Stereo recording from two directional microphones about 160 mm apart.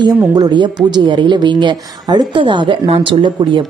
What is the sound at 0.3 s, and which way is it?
A woman's voice, 25° right (ahead or behind).